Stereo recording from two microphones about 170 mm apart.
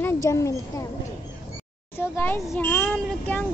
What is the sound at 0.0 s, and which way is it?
Speech, 20° left (ahead or behind).